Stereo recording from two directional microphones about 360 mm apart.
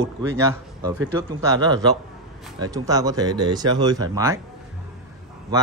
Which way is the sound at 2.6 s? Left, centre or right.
Centre.